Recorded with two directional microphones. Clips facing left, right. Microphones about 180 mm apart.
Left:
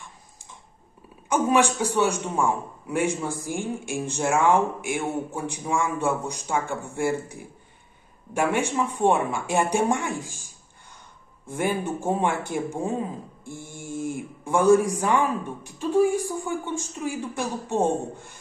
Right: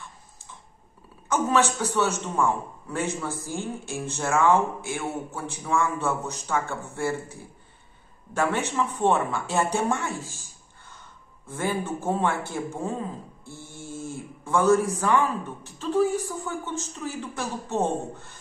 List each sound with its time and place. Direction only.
1.3 s a man's voice: 15° left (ahead or behind)